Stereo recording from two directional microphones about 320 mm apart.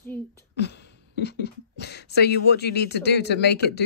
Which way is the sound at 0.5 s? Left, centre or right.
Left.